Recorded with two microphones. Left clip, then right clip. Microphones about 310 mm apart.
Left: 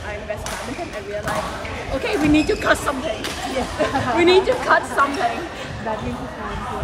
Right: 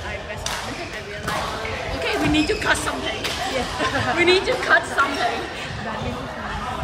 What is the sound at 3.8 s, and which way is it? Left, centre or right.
Speech, centre.